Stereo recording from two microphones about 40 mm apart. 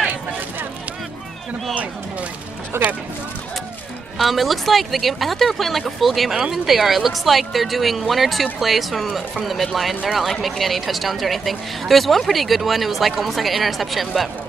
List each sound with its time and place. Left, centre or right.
2.7 s speech: right
4.2 s speech: centre